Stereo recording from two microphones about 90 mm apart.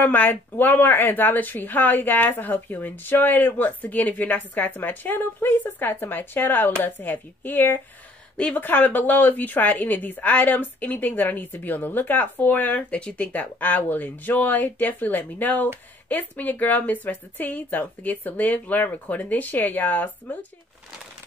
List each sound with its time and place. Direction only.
0.0 s speech: 20° left (ahead or behind)